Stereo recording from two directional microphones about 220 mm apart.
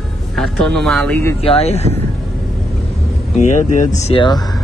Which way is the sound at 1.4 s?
30° left (ahead or behind).